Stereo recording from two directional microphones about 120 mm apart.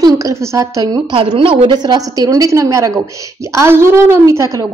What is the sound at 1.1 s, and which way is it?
A woman's voice, 50° right (ahead or behind).